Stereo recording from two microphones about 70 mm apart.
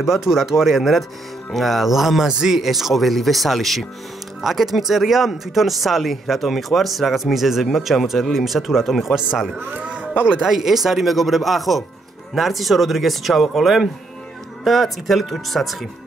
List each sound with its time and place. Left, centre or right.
0.0 s speech: centre
9.6 s a man's voice: centre
10.2 s speech: centre